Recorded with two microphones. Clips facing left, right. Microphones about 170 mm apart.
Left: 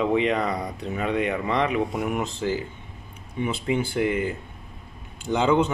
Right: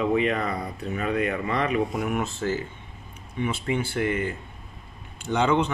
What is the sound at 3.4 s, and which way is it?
Speech, 15° left (ahead or behind).